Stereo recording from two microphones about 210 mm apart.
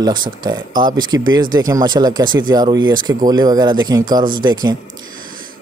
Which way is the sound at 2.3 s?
70° right (ahead or behind).